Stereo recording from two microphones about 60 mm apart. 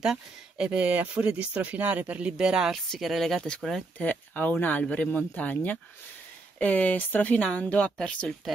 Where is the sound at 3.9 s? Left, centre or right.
Left.